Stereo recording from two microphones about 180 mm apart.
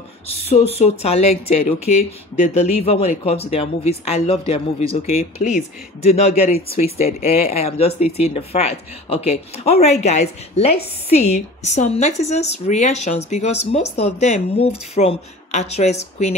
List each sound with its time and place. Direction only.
0.5 s speech: 35° left (ahead or behind)